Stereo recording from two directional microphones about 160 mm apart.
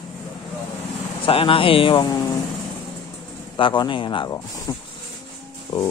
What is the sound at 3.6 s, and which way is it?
Speech, 30° left (ahead or behind).